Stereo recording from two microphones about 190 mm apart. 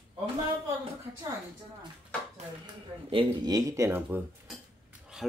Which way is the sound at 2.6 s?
25° right (ahead or behind).